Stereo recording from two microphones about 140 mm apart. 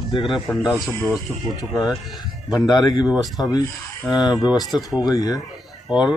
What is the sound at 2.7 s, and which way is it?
Speech, 30° left (ahead or behind).